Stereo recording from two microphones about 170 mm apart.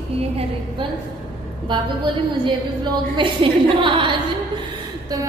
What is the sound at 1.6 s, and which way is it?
A woman's voice, 25° right (ahead or behind).